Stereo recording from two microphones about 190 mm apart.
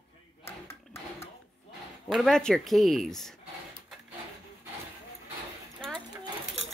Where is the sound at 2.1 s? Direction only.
Centre (ahead or behind).